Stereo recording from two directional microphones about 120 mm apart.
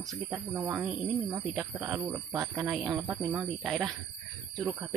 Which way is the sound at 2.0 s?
30° right (ahead or behind).